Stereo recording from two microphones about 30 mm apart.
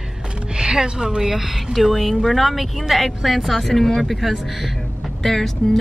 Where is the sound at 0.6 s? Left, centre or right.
Right; by 3.7 s centre.